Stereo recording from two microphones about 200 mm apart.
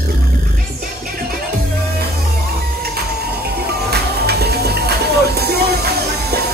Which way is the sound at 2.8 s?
50° right (ahead or behind).